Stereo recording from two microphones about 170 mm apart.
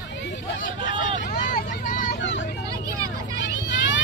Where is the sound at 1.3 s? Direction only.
60° left (ahead or behind).